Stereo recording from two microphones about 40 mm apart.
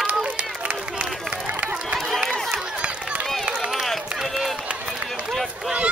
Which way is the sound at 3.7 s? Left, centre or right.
Centre.